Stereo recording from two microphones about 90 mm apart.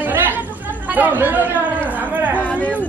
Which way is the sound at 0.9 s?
20° right (ahead or behind).